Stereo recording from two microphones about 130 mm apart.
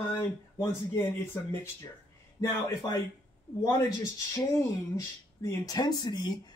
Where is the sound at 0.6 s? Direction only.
20° left (ahead or behind).